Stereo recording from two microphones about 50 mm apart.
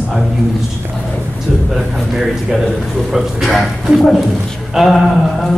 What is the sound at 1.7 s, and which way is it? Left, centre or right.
A man's voice, centre.